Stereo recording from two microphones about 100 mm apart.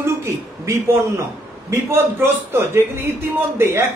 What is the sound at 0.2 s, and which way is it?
A man's voice, 30° right (ahead or behind).